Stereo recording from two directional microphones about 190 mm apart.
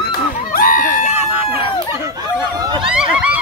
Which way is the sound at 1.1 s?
10° right (ahead or behind).